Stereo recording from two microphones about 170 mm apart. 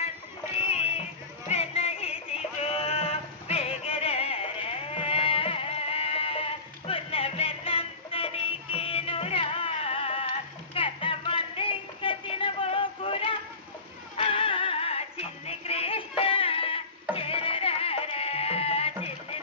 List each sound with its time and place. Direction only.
1.5 s music: 35° left (ahead or behind)